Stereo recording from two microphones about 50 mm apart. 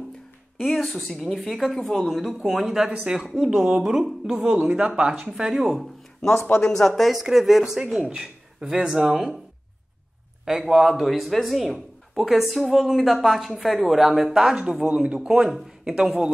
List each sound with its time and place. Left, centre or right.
0.6 s a woman's voice: centre
3.4 s speech: centre
3.8 s speech: centre
6.6 s a woman's voice: centre
10.7 s a woman's voice: centre